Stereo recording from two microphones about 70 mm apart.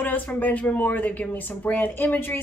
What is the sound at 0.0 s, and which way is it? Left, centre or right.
Speech, left.